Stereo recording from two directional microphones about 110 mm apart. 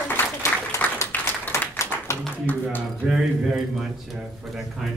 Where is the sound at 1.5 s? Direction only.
25° left (ahead or behind).